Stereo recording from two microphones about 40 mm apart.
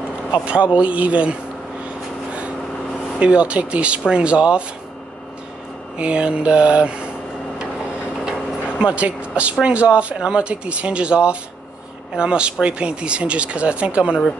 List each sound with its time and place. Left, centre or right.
0.3 s a man's voice: right
3.2 s speech: right
5.9 s speech: right
8.3 s vehicle: right
9.0 s speech: right